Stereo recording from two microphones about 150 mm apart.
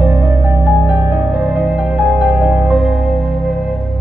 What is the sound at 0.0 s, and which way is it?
Music, 10° right (ahead or behind).